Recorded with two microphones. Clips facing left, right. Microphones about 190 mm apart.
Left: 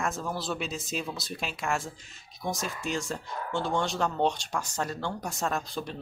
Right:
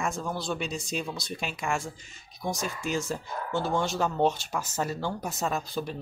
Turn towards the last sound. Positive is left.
turn(degrees=0)  # may be behind; listen again after turning